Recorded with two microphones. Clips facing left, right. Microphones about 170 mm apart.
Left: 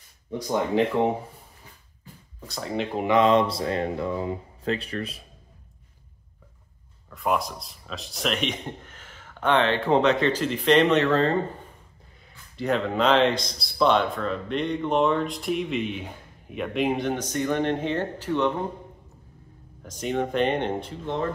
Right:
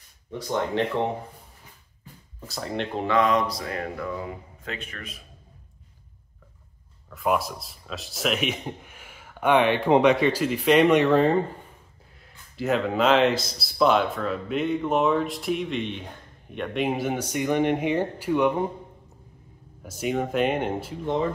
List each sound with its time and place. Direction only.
2.4 s speech: centre (ahead or behind)
3.1 s speech: 25° left (ahead or behind)
7.1 s a man's voice: 5° right (ahead or behind)
12.2 s speech: centre (ahead or behind)
19.8 s a man's voice: 10° right (ahead or behind)